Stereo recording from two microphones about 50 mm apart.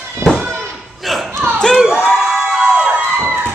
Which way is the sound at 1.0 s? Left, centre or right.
Centre.